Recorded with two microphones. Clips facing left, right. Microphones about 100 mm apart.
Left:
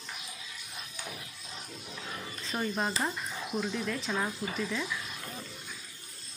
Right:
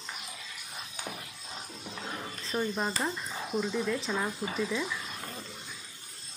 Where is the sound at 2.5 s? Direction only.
Centre (ahead or behind).